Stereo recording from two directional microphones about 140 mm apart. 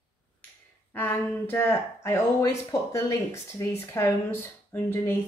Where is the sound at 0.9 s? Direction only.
15° left (ahead or behind).